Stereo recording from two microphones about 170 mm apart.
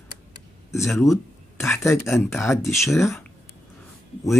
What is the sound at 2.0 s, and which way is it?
Speech, 15° left (ahead or behind).